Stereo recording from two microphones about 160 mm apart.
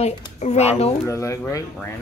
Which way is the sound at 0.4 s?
45° left (ahead or behind).